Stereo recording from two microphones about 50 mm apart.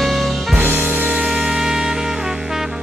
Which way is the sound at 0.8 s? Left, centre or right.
Right.